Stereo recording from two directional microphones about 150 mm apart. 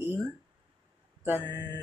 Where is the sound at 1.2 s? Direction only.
15° right (ahead or behind).